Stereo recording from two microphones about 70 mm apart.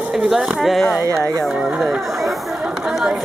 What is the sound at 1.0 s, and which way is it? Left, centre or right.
Speech, right.